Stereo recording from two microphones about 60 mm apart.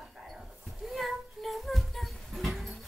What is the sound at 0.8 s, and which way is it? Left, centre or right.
Music, centre.